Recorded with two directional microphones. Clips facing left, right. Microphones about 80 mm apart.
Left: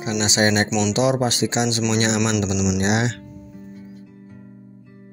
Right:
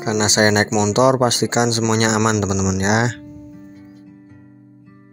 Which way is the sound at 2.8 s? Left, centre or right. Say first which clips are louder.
Right 3 dB; right.